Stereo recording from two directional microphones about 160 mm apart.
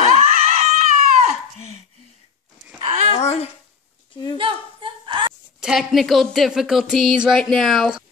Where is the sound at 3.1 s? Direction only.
40° left (ahead or behind).